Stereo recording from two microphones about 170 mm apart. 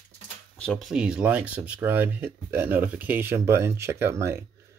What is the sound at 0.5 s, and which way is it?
Speech, 5° left (ahead or behind).